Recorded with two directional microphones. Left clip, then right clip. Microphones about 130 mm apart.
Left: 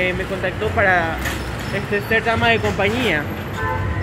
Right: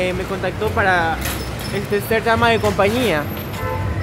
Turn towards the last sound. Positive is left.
turn(degrees=-40)  # may be behind; listen again after turning